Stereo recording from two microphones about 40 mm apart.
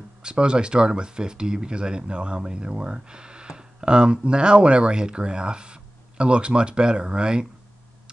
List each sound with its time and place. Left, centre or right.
0.2 s speech: right